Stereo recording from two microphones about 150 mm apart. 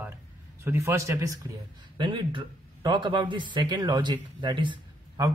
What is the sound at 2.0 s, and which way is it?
Speech, 30° right (ahead or behind).